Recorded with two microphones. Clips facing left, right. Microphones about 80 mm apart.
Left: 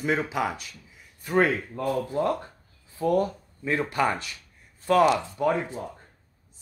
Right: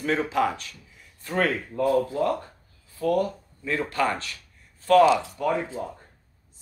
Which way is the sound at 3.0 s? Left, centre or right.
Left.